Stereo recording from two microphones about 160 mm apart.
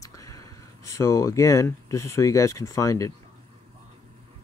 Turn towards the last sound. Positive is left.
turn(degrees=20)  # may be behind; listen again after turning